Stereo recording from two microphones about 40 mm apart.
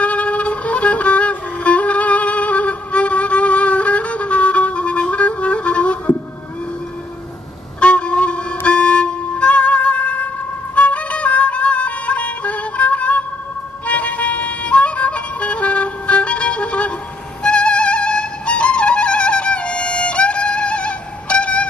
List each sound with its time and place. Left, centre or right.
0.0 s music: left
7.8 s music: left